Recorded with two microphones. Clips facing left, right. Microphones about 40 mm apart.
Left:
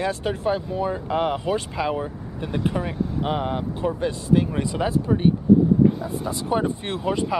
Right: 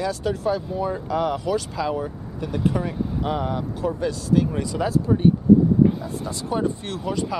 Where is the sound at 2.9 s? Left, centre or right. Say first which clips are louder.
Left 1 dB; centre.